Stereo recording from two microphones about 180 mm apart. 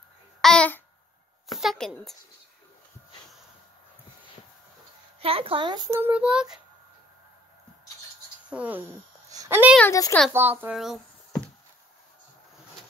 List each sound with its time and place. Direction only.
0.4 s babbling: 5° left (ahead or behind)
1.6 s child singing: centre (ahead or behind)
5.2 s a woman's voice: 30° right (ahead or behind)
5.9 s child singing: 10° right (ahead or behind)
8.5 s a woman's voice: 10° right (ahead or behind)
9.8 s speech: 20° left (ahead or behind)
10.3 s a child's voice: 10° right (ahead or behind)